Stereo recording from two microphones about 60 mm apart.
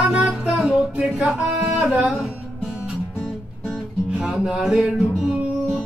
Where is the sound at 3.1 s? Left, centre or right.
Centre.